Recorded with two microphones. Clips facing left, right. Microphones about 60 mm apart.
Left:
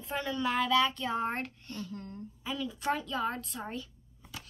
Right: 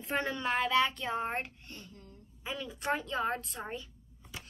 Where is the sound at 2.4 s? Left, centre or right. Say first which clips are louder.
Left 3 dB; right.